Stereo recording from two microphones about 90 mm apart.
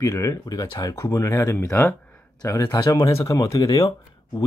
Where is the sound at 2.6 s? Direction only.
55° left (ahead or behind).